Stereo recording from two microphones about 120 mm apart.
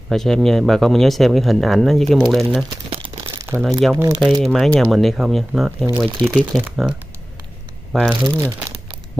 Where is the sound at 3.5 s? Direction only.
15° right (ahead or behind).